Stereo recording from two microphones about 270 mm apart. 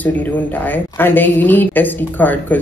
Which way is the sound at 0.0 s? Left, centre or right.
Centre.